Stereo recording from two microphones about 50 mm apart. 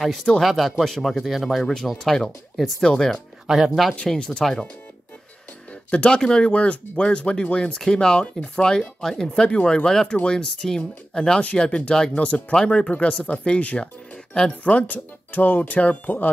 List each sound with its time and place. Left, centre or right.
0.0 s speech: centre
2.0 s speech: centre
3.4 s speech: centre
4.1 s speech: centre
5.9 s speech: left